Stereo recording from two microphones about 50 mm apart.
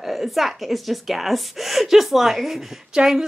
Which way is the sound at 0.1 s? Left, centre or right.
Centre.